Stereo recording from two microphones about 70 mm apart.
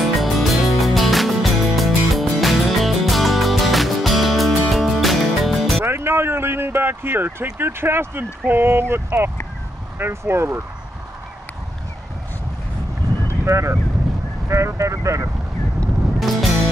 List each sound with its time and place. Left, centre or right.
0.0 s music: centre
5.9 s a sound: right
7.5 s speech: right
13.5 s speech: right
16.2 s music: centre